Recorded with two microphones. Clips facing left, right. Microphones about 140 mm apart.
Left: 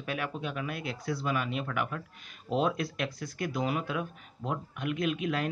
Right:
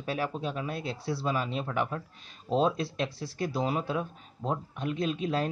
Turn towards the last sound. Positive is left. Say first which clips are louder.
# right 1 dB
turn(degrees=-30)  # may be behind; listen again after turning